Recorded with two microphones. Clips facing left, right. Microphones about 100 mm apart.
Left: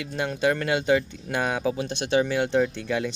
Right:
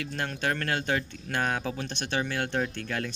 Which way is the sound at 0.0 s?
10° left (ahead or behind).